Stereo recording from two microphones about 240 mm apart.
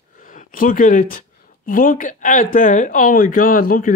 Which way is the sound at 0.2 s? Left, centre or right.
Left.